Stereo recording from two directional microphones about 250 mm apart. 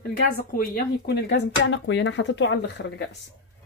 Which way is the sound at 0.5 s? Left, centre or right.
Left.